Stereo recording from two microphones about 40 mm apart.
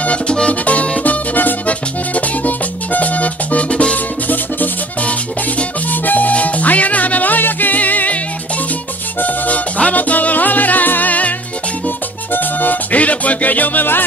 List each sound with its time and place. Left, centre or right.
0.5 s music: left
5.9 s music: left
9.8 s music: left